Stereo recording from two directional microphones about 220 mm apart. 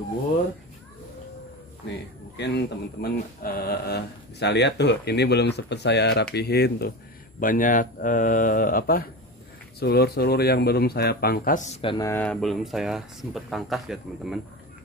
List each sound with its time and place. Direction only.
1.9 s speech: 50° left (ahead or behind); by 14.4 s centre (ahead or behind)